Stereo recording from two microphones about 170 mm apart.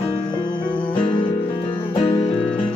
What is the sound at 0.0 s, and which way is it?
Music, 30° left (ahead or behind).